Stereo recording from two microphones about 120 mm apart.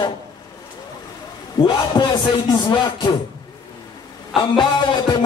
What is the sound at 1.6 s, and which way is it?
Music, 40° left (ahead or behind).